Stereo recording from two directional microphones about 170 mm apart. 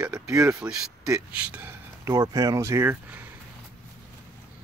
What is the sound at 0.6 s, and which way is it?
Speech, 5° right (ahead or behind).